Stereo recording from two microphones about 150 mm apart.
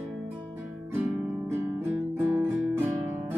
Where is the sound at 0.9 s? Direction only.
10° right (ahead or behind).